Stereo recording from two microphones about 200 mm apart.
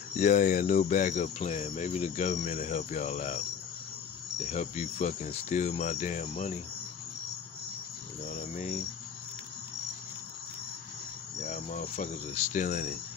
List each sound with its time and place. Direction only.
0.1 s cricket: 40° left (ahead or behind)
4.4 s cricket: 35° left (ahead or behind)
8.3 s cricket: 40° left (ahead or behind)
11.4 s cricket: 35° left (ahead or behind)